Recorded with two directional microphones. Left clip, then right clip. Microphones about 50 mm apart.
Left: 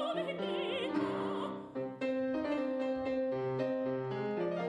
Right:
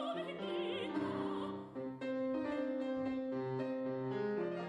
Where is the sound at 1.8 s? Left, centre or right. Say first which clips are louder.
Left 5 dB; left.